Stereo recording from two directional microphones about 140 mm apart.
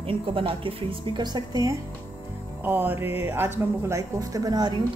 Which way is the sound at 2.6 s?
15° right (ahead or behind).